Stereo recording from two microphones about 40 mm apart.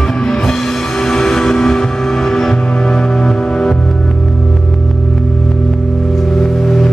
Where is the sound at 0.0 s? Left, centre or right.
Centre.